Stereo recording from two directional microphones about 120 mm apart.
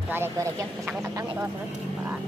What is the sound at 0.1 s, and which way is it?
Speech, 20° right (ahead or behind).